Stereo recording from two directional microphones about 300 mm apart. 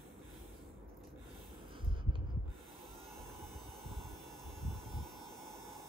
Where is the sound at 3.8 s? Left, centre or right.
Centre.